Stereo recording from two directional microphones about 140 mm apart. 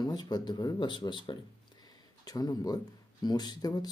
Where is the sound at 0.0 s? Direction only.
30° left (ahead or behind).